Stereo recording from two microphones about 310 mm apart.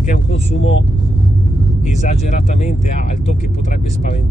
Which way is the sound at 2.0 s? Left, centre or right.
Left.